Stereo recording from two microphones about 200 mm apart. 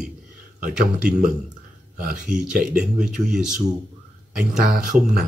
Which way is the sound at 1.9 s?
45° right (ahead or behind).